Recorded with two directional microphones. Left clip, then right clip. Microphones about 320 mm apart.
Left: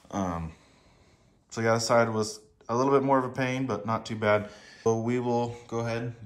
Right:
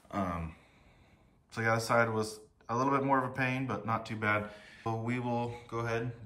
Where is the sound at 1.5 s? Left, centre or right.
Centre.